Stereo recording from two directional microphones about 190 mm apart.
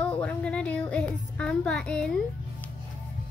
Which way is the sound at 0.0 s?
5° left (ahead or behind).